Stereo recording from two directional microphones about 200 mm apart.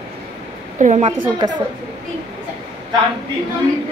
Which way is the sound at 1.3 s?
20° right (ahead or behind).